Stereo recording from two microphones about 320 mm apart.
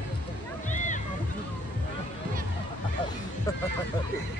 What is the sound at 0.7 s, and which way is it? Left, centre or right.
Music, left.